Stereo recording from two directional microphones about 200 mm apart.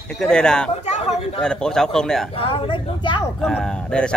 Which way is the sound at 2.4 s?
25° left (ahead or behind).